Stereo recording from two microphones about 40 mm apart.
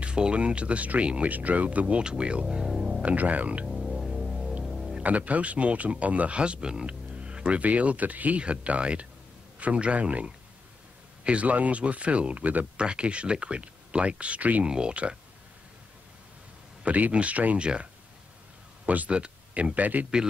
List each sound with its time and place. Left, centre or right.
0.0 s speech: right
2.0 s speech: right
2.6 s music: centre
3.0 s speech: right
3.7 s music: centre
5.0 s speech: right
8.4 s speech: right
11.2 s speech: right
12.7 s speech: right
14.6 s speech: right
16.8 s speech: right
17.6 s speech: right
19.0 s speech: right